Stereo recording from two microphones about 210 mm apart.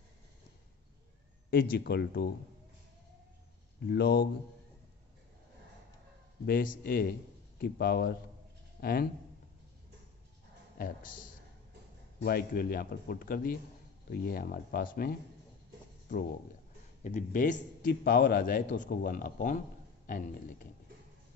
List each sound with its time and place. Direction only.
1.5 s speech: 45° left (ahead or behind)
3.8 s speech: 50° left (ahead or behind)
6.4 s a man's voice: 40° left (ahead or behind)
12.2 s speech: 45° left (ahead or behind)
17.0 s a man's voice: 40° left (ahead or behind)